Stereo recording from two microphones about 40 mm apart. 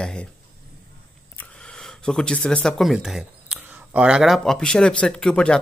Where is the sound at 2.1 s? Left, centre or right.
Centre.